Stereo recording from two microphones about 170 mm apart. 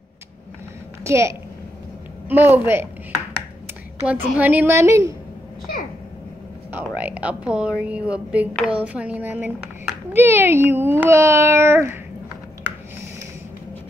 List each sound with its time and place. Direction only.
1.0 s a child's voice: 15° right (ahead or behind)
4.0 s a child's voice: 10° right (ahead or behind)
6.7 s a child's voice: 10° right (ahead or behind)